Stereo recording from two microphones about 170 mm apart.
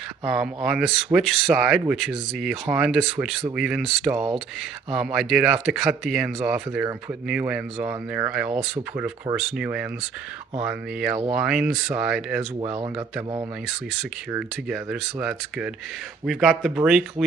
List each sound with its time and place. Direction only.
0.2 s speech: 5° right (ahead or behind)
12.5 s a man's voice: 30° right (ahead or behind)
14.7 s speech: 5° right (ahead or behind)